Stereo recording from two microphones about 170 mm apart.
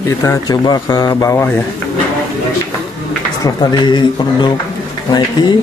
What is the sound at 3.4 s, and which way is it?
Speech, 25° left (ahead or behind).